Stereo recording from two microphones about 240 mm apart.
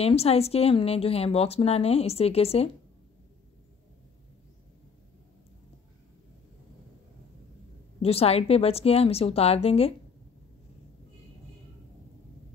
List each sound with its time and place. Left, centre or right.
0.0 s a woman's voice: left
8.0 s a woman's voice: left